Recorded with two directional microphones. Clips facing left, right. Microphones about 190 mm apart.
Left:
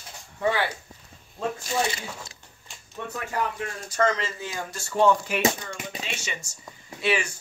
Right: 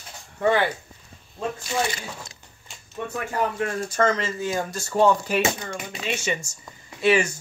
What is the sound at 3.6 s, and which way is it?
Speech, 50° right (ahead or behind).